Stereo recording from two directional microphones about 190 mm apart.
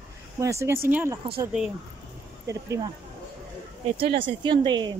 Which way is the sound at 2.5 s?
20° right (ahead or behind).